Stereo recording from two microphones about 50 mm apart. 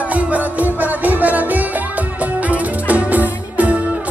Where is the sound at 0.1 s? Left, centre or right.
Right.